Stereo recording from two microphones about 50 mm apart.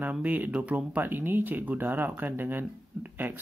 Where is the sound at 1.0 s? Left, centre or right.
Right.